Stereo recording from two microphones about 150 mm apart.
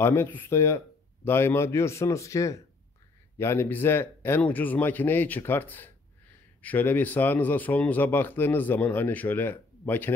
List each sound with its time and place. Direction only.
0.0 s a man's voice: 15° left (ahead or behind)